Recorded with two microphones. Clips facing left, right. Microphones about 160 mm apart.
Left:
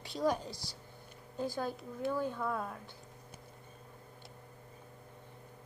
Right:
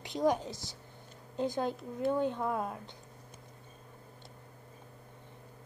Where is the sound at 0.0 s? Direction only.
20° right (ahead or behind).